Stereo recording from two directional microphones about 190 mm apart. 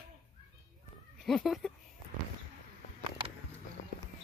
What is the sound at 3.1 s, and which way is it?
Music, 30° right (ahead or behind).